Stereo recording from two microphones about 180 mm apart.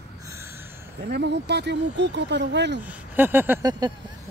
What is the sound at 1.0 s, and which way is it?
Speech, 70° right (ahead or behind).